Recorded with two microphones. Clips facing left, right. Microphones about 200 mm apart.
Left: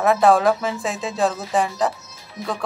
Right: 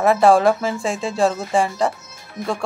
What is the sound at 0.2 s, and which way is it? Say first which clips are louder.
A woman's voice: right 2 dB; centre (ahead or behind).